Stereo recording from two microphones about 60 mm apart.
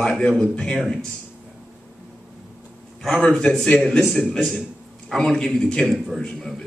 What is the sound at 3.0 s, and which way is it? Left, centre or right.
A man's voice, centre.